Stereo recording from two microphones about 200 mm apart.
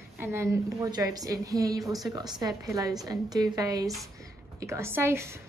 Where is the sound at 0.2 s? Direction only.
15° right (ahead or behind).